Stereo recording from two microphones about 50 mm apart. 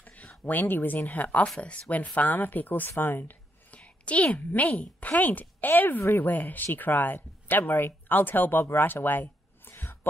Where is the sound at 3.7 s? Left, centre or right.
Left.